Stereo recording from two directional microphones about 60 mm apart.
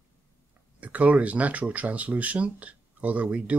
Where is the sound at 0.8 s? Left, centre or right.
Right.